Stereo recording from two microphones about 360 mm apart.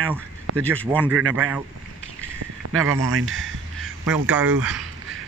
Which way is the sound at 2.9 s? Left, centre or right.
Right.